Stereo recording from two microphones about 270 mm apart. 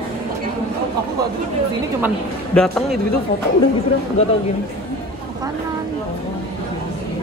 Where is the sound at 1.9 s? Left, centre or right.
Centre.